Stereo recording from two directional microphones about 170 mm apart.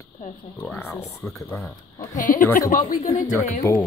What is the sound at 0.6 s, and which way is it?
Speech, 10° left (ahead or behind).